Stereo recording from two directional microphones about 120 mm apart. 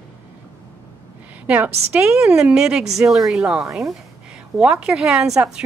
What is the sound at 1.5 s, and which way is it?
A woman's voice, 15° right (ahead or behind).